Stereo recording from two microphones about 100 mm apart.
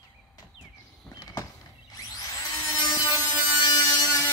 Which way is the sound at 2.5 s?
40° left (ahead or behind).